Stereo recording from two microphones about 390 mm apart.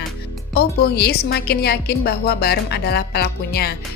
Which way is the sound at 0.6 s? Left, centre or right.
Left.